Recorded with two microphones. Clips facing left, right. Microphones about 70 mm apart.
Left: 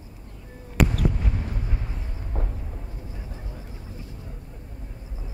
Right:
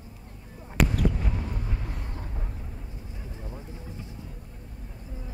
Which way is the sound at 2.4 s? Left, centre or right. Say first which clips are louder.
Left 7 dB; left.